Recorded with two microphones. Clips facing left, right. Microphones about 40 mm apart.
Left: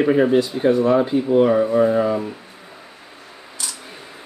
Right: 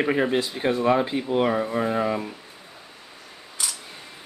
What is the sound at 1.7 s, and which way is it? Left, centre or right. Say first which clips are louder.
Speech: left 7 dB; centre.